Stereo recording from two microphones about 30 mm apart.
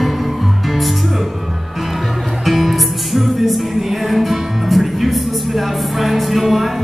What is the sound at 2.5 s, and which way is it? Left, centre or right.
Music, centre.